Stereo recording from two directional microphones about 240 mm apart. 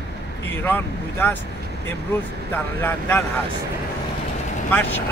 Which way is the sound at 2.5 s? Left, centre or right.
Centre.